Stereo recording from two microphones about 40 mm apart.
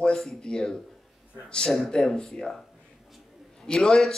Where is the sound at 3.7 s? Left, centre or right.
Centre.